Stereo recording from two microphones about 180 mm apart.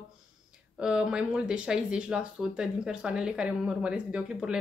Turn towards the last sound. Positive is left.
turn(degrees=-5)  # may be behind; listen again after turning